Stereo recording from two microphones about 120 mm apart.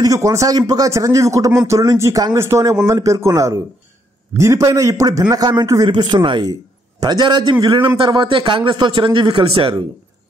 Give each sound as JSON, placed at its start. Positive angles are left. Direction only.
{"t": 0.0, "sound": "a man's voice", "side_deg": -30}